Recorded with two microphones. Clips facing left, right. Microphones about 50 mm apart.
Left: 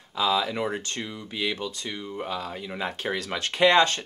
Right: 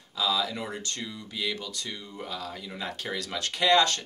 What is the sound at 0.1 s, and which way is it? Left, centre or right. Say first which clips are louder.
Speech: left 4 dB; left.